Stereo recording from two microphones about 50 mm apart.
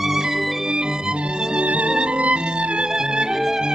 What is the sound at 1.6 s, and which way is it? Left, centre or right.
Music, right.